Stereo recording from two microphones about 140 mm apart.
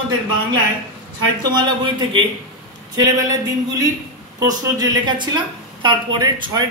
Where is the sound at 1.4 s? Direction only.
35° right (ahead or behind).